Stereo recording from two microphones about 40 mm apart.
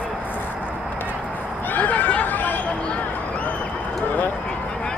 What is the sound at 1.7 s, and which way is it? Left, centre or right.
Chatter, left.